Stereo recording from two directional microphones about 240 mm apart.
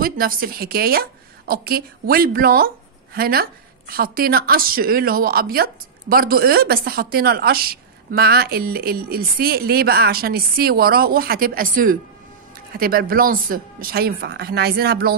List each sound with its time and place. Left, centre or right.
0.0 s a woman's voice: right